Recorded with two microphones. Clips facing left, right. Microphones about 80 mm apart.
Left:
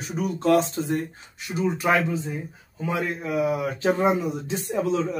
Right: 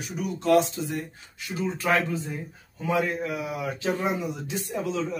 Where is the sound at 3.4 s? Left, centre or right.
Left.